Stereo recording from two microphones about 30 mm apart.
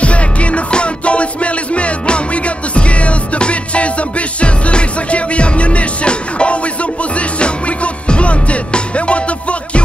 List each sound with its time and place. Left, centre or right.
0.0 s music: left